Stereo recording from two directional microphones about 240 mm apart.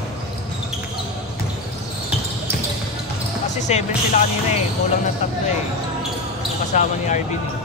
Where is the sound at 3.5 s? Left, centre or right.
Left.